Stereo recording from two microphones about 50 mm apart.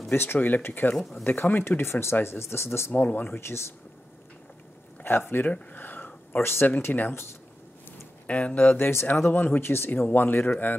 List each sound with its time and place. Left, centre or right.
0.1 s speech: left
2.9 s speech: left
3.3 s speech: left
5.0 s speech: left
5.5 s a sound: left
6.4 s speech: left
6.9 s speech: left
8.3 s speech: left
8.7 s speech: left
9.6 s speech: left
9.8 s speech: left